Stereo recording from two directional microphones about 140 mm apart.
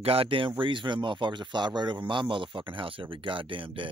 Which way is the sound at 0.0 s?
40° right (ahead or behind).